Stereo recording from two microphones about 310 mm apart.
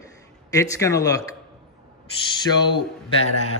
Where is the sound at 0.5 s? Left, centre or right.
Centre.